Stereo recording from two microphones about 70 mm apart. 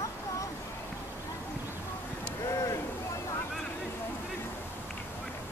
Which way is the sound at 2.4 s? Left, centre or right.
Left.